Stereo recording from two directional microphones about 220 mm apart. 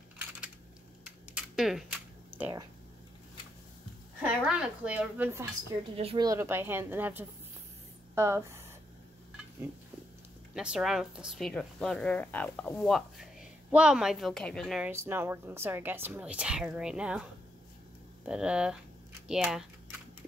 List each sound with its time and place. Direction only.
1.3 s camera: centre (ahead or behind)
2.3 s speech: 10° right (ahead or behind)
4.2 s a woman's voice: 5° right (ahead or behind)
5.9 s speech: 25° right (ahead or behind)
6.2 s a woman's voice: 15° right (ahead or behind)
9.6 s a woman's voice: 10° right (ahead or behind)
14.9 s a woman's voice: 10° right (ahead or behind)